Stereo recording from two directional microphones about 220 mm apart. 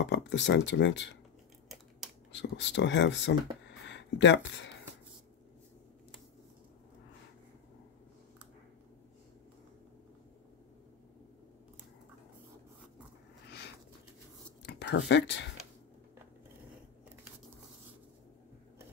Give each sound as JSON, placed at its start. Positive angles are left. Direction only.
{"t": 0.0, "sound": "speech", "side_deg": 55}
{"t": 2.3, "sound": "speech", "side_deg": 55}
{"t": 14.6, "sound": "a sound", "side_deg": 50}